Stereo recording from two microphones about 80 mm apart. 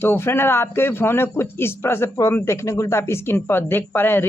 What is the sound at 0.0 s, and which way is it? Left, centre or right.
Speech, left.